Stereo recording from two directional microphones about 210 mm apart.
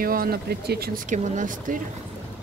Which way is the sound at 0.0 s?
45° right (ahead or behind).